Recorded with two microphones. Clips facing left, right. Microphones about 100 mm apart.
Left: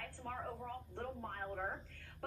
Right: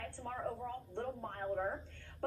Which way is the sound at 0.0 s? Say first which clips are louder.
Right 4 dB; 30° right (ahead or behind).